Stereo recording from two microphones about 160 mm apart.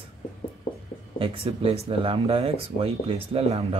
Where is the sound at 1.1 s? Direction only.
35° right (ahead or behind).